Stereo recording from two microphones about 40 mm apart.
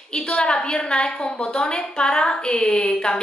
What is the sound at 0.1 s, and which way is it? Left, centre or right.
A woman's voice, left.